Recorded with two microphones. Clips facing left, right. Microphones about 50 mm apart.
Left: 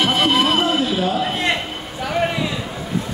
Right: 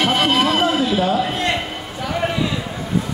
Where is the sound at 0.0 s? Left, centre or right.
Right.